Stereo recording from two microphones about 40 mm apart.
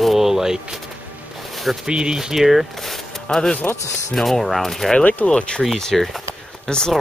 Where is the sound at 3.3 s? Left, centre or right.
Centre.